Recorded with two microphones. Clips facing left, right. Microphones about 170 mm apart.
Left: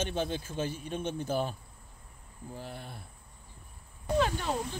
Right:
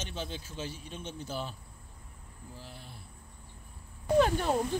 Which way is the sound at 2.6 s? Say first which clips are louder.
Left 7 dB; 55° left (ahead or behind).